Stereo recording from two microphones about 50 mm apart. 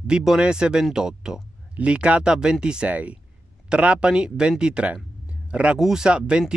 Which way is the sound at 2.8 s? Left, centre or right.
Right.